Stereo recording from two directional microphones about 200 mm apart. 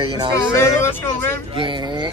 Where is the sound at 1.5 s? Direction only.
25° right (ahead or behind).